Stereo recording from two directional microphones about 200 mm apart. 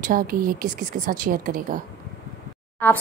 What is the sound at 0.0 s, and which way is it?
A woman's voice, 45° right (ahead or behind).